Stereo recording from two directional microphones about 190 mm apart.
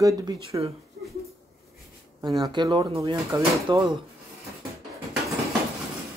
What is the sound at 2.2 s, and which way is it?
Speech, 20° right (ahead or behind).